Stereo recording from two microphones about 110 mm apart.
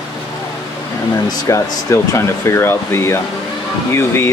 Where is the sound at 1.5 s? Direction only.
25° left (ahead or behind).